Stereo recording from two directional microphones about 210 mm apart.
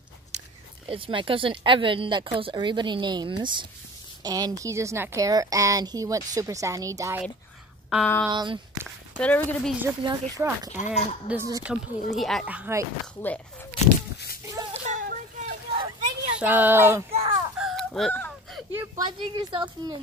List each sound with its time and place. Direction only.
0.8 s a woman's voice: 25° right (ahead or behind)
7.9 s speech: 5° left (ahead or behind)
8.3 s speech: 20° right (ahead or behind)
9.1 s speech: 5° left (ahead or behind)
10.0 s a woman's voice: 15° right (ahead or behind)
13.0 s speech: 5° left (ahead or behind)
14.1 s a sound: 50° left (ahead or behind)
14.5 s a sound: 15° right (ahead or behind)
14.9 s a sound: 40° right (ahead or behind)
16.3 s a woman's voice: 10° right (ahead or behind)
17.1 s chicken: 30° right (ahead or behind)
17.6 s chicken: centre (ahead or behind)
18.8 s speech: 20° right (ahead or behind)